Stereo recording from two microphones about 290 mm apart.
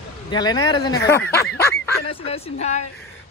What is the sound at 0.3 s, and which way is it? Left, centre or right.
Speech, centre.